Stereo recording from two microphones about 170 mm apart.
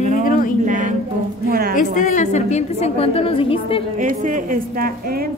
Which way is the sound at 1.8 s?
50° left (ahead or behind).